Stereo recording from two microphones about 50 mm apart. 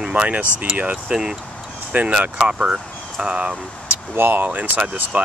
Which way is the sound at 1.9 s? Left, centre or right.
Right.